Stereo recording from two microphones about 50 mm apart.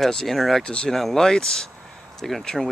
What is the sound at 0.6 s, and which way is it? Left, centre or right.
Speech, centre.